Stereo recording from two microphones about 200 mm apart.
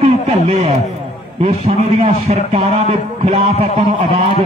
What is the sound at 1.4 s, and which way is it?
A man's voice, 30° right (ahead or behind).